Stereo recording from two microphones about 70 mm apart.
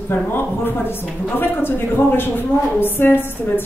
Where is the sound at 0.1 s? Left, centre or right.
Left.